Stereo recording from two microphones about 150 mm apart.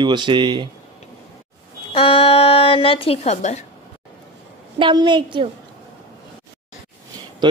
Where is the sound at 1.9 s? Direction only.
35° left (ahead or behind).